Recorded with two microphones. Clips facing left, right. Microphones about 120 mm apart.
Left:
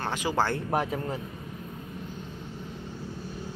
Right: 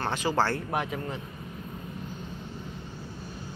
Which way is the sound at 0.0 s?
15° left (ahead or behind).